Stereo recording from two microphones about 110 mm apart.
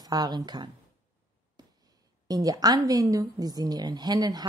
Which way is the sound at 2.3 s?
35° right (ahead or behind).